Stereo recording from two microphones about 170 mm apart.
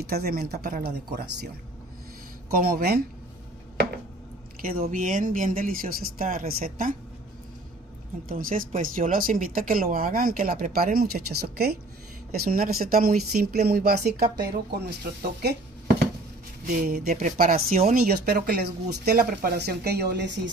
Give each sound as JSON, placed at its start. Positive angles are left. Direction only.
{"t": 0.0, "sound": "speech", "side_deg": -65}
{"t": 2.5, "sound": "speech", "side_deg": -60}
{"t": 4.6, "sound": "speech", "side_deg": -60}
{"t": 8.3, "sound": "speech", "side_deg": -55}
{"t": 16.7, "sound": "speech", "side_deg": -60}